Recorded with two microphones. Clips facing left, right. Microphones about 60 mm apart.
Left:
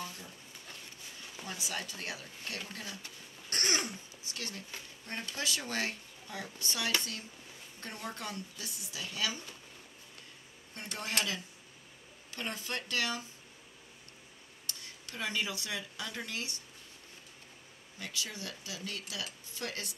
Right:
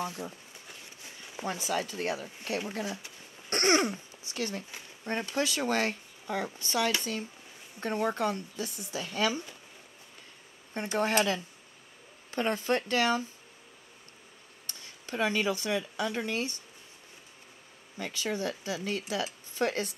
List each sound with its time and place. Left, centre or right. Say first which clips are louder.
1.4 s speech: right 9 dB; right
3.5 s speech: right 9 dB; right
7.8 s speech: right 12 dB; right
10.7 s speech: right 13 dB; right
12.3 s speech: right 11 dB; right
15.0 s speech: right 8 dB; right
18.0 s speech: right 9 dB; right